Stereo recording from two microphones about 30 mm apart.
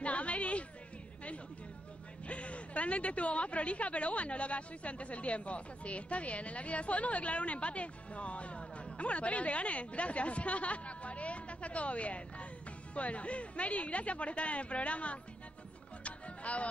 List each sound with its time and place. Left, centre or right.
0.0 s a sound: left
2.2 s a woman's voice: left
16.0 s music: left